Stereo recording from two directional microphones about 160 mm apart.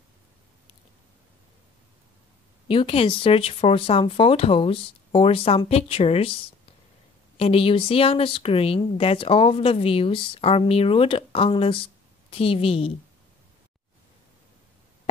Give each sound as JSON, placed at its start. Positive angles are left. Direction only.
{"t": 2.7, "sound": "speech", "side_deg": 35}
{"t": 7.3, "sound": "speech", "side_deg": 40}